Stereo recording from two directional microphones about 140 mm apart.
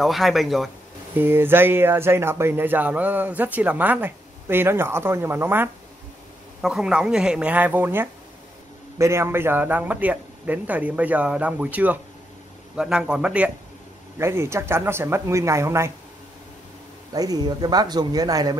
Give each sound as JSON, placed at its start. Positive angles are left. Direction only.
{"t": 0.0, "sound": "speech", "side_deg": 0}
{"t": 1.1, "sound": "speech", "side_deg": -15}
{"t": 6.6, "sound": "speech", "side_deg": -5}
{"t": 14.1, "sound": "speech", "side_deg": -20}
{"t": 17.1, "sound": "speech", "side_deg": -25}